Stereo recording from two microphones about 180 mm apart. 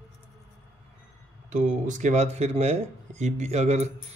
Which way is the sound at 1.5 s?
45° right (ahead or behind).